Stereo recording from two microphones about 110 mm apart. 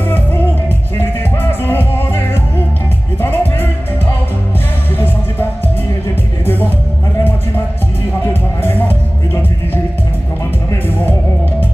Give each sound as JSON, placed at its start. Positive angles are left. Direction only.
{"t": 0.9, "sound": "music", "side_deg": 20}
{"t": 4.9, "sound": "music", "side_deg": 20}
{"t": 8.3, "sound": "music", "side_deg": 20}